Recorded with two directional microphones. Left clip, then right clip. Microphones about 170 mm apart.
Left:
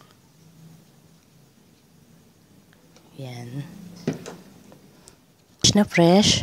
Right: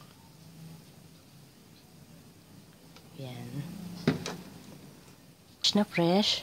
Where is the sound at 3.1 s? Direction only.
40° left (ahead or behind).